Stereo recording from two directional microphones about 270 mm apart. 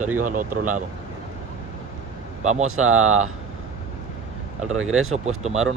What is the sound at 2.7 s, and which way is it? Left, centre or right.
Speech, right.